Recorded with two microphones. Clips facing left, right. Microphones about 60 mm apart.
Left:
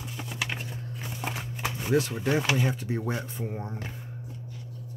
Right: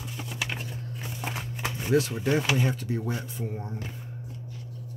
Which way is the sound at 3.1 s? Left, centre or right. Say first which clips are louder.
Left 1 dB; left.